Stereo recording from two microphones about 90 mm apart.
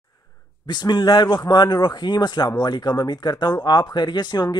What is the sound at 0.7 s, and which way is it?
Speech, 55° left (ahead or behind).